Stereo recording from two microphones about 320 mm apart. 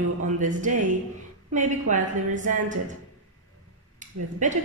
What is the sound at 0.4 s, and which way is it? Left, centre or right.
A woman's voice, right.